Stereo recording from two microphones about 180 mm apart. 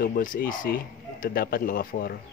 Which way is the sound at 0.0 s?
50° left (ahead or behind).